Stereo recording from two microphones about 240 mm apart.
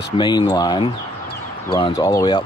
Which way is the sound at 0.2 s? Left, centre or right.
Centre.